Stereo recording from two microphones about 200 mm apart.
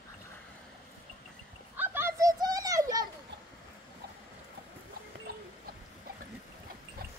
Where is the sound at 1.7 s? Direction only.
10° right (ahead or behind).